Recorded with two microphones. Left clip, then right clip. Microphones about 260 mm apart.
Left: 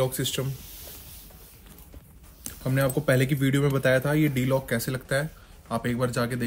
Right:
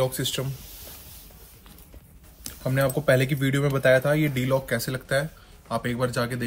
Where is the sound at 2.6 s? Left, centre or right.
Centre.